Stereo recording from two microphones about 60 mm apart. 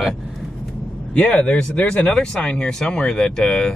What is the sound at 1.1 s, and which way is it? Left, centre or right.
Speech, centre.